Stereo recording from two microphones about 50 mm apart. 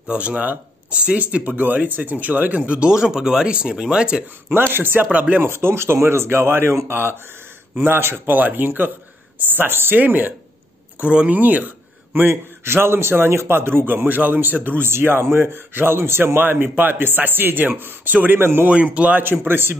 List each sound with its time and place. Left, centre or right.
0.0 s speech: right
0.4 s speech: right
0.9 s speech: right
1.2 s speech: right
4.7 s a man's voice: right
5.4 s a man's voice: right
8.4 s speech: right
11.0 s speech: centre
11.2 s speech: right
12.6 s a man's voice: right
14.8 s a man's voice: right
18.7 s speech: right
19.2 s a man's voice: right